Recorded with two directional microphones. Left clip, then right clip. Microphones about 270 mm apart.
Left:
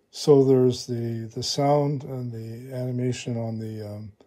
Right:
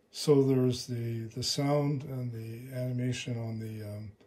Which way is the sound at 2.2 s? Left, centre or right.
Left.